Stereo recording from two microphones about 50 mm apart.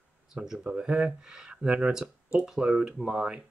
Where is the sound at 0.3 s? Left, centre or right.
Centre.